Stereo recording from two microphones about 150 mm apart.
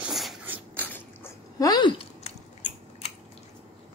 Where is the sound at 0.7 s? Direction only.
15° left (ahead or behind).